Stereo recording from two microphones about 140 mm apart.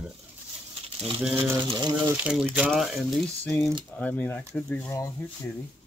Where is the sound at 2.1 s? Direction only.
5° right (ahead or behind).